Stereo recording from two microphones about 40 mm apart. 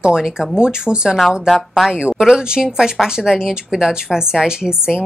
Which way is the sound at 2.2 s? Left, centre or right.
Centre.